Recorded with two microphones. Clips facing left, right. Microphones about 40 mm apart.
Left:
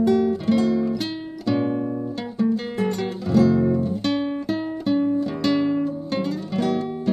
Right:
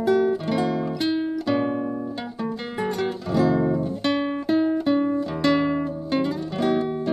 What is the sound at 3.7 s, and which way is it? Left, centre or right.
Guitar, centre.